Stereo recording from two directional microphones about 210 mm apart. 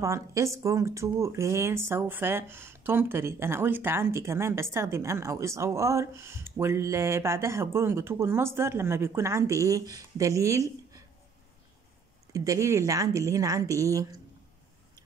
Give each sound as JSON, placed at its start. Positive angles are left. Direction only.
{"t": 0.0, "sound": "speech", "side_deg": -15}
{"t": 12.3, "sound": "speech", "side_deg": -15}